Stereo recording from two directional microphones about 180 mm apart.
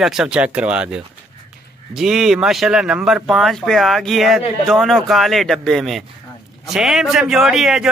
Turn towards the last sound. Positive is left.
turn(degrees=0)  # may be behind; listen again after turning